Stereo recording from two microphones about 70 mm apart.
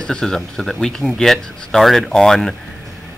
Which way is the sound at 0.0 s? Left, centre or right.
Centre.